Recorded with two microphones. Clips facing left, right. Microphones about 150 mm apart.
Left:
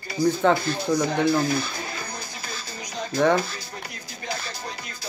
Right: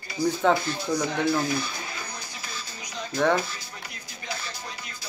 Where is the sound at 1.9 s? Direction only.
40° left (ahead or behind).